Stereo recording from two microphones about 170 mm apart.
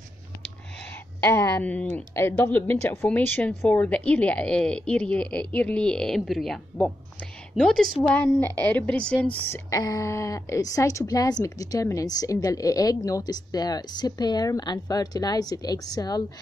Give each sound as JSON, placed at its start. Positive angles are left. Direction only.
{"t": 1.2, "sound": "speech", "side_deg": 15}
{"t": 9.5, "sound": "a woman's voice", "side_deg": 20}